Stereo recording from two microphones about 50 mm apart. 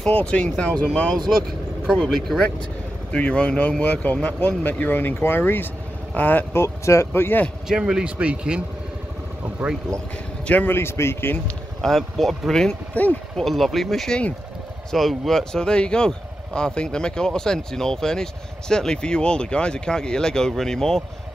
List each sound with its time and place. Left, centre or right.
0.1 s speech: left; by 2.4 s centre
3.1 s speech: left
6.5 s speech: left
7.6 s speech: centre
8.2 s speech: right
10.4 s speech: left
10.7 s speech: left
11.8 s speech: centre
13.0 s speech: left
13.4 s speech: centre